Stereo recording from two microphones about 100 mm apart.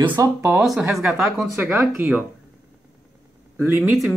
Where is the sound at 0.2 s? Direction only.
30° right (ahead or behind).